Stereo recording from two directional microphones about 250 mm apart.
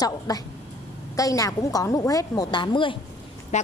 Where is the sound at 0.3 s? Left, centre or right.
Centre.